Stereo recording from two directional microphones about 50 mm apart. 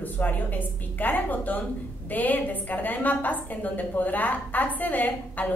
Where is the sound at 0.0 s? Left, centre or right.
Left.